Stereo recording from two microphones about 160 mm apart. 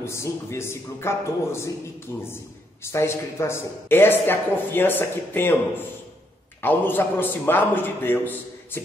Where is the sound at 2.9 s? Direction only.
15° left (ahead or behind).